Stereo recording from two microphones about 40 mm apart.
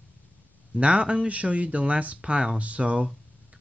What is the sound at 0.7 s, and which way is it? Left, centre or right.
Speech, right.